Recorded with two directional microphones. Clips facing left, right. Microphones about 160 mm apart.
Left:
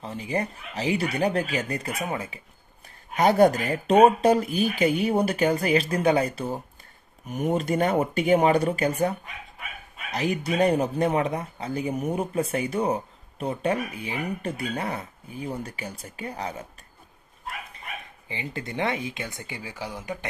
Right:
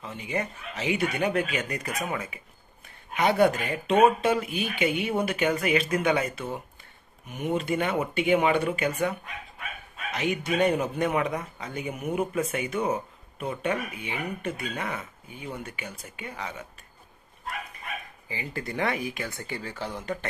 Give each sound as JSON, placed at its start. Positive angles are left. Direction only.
{"t": 0.0, "sound": "speech", "side_deg": 35}
{"t": 10.1, "sound": "speech", "side_deg": 35}
{"t": 18.3, "sound": "speech", "side_deg": 25}